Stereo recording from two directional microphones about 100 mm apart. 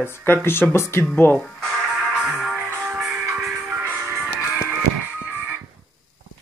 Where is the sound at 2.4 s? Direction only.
Centre (ahead or behind).